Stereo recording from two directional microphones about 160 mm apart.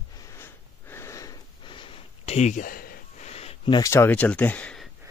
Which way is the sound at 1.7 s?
35° left (ahead or behind).